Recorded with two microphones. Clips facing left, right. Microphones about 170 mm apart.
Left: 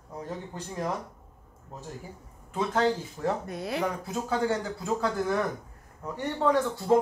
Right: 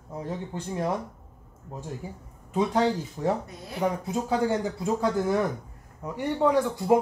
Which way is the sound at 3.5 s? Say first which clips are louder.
Left 4 dB; 80° left.